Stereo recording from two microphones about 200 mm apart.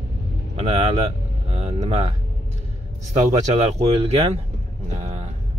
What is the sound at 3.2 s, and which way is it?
Speech, 35° right (ahead or behind).